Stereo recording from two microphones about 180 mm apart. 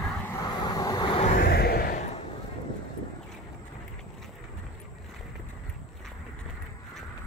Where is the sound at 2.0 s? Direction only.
35° left (ahead or behind).